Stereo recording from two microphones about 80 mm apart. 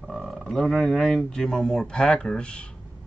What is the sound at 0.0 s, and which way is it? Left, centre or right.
Speech, centre.